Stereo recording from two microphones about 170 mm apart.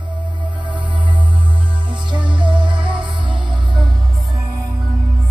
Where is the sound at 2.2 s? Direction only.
30° right (ahead or behind).